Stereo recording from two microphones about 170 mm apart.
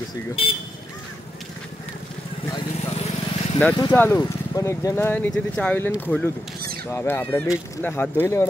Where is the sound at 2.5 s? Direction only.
35° left (ahead or behind).